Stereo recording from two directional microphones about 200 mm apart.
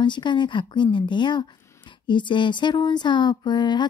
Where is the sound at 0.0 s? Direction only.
25° left (ahead or behind).